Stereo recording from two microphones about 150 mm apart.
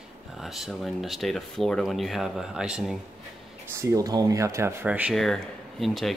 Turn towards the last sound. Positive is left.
turn(degrees=0)  # may be behind; listen again after turning